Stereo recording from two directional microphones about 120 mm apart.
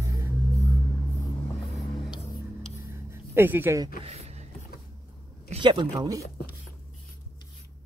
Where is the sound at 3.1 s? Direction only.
20° right (ahead or behind).